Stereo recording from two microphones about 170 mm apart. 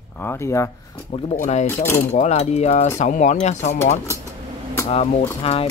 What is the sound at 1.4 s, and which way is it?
Speech, 45° left (ahead or behind).